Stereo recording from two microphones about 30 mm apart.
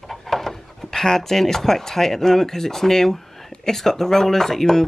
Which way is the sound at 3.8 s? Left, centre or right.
Centre.